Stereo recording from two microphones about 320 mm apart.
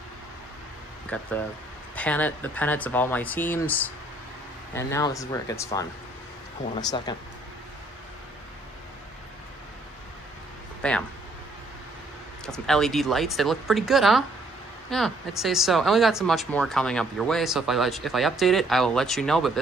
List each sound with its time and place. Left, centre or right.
1.1 s speech: centre
7.1 s speech: centre
10.8 s speech: centre
12.4 s speech: centre